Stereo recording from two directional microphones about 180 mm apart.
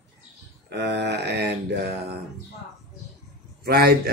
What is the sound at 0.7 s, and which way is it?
Speech, 70° right (ahead or behind).